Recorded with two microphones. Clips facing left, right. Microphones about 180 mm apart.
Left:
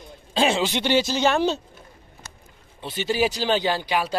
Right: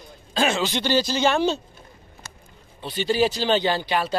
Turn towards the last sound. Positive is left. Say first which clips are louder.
# right 1 dB
turn(degrees=10)  # may be behind; listen again after turning